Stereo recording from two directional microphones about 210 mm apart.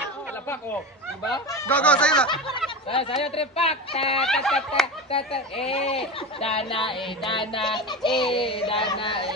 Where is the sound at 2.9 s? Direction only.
25° left (ahead or behind).